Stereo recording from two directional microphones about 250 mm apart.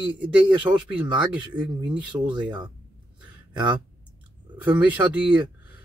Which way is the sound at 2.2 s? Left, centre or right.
Centre.